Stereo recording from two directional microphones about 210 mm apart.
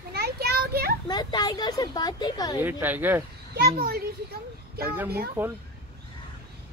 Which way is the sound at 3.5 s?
45° right (ahead or behind).